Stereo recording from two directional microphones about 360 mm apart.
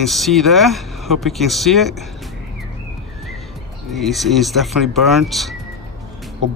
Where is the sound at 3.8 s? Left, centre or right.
Centre.